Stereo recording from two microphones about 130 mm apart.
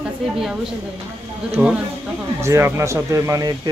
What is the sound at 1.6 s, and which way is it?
Speech, 15° right (ahead or behind).